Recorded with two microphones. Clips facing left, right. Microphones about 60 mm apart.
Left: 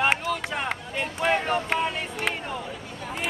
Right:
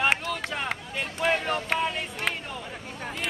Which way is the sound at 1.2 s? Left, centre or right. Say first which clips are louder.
Left 2 dB; centre.